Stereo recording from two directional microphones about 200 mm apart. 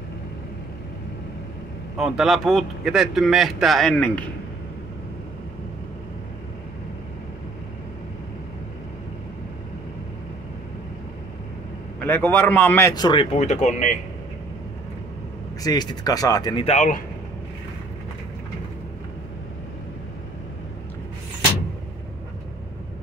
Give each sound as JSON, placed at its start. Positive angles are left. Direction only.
{"t": 2.0, "sound": "a man's voice", "side_deg": 0}
{"t": 12.0, "sound": "a man's voice", "side_deg": 10}
{"t": 15.6, "sound": "a man's voice", "side_deg": 20}
{"t": 16.6, "sound": "speech", "side_deg": 40}